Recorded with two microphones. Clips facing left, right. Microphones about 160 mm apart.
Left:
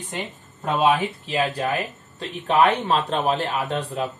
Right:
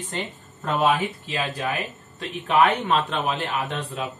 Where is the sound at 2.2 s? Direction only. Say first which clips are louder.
Left 1 dB; 35° left (ahead or behind).